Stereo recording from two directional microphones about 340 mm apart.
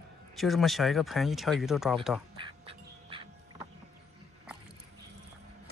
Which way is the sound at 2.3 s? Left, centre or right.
Centre.